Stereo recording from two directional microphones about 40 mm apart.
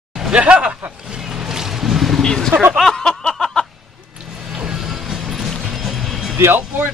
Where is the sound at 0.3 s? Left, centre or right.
Right.